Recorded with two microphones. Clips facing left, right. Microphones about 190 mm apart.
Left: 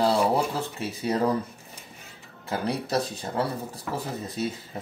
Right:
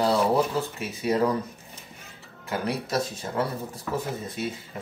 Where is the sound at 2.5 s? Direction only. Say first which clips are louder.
Left 1 dB; 30° left (ahead or behind).